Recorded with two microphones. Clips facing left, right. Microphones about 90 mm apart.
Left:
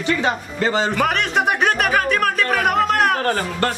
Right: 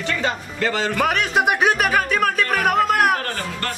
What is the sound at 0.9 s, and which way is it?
A man's voice, centre (ahead or behind).